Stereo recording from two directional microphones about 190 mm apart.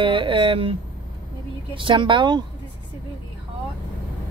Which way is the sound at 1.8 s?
25° right (ahead or behind).